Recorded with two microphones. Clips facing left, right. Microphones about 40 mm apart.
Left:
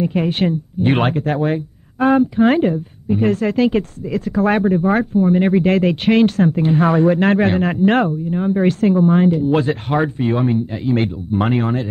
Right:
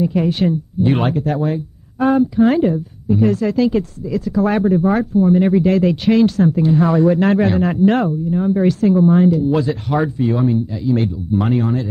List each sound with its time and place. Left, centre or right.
0.0 s speech: left